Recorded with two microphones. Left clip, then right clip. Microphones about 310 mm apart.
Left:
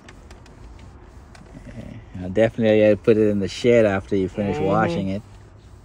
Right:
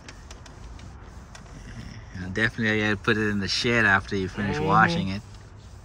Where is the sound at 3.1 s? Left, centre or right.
Centre.